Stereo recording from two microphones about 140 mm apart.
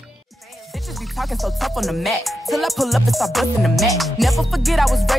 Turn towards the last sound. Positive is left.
turn(degrees=0)  # may be behind; listen again after turning